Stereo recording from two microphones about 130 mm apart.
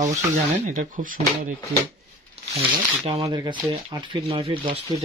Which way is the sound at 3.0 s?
50° right (ahead or behind).